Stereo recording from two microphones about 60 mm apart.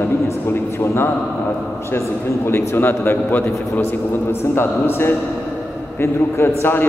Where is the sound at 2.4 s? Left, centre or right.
Left.